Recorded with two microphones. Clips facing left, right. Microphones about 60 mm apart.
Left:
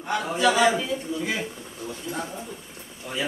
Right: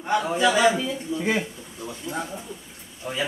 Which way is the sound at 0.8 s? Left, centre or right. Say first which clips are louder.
Right 2 dB; right.